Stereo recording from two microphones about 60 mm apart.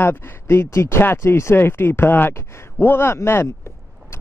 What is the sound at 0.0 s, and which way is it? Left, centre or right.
Speech, left.